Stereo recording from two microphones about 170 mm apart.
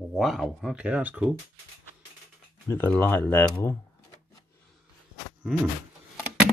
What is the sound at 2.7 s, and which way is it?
Speech, 10° left (ahead or behind).